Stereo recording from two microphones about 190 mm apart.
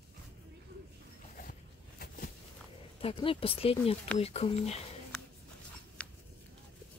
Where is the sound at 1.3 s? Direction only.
50° left (ahead or behind).